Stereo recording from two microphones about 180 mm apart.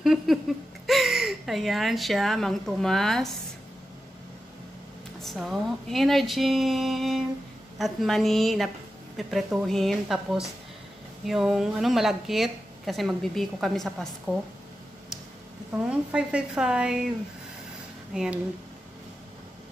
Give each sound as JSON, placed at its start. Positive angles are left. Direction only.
{"t": 0.0, "sound": "speech", "side_deg": 0}
{"t": 5.2, "sound": "a woman's voice", "side_deg": 0}
{"t": 15.9, "sound": "a woman's voice", "side_deg": -5}
{"t": 18.1, "sound": "a woman's voice", "side_deg": -5}